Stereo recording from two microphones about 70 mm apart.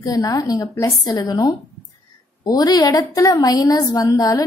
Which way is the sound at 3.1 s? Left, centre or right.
Left.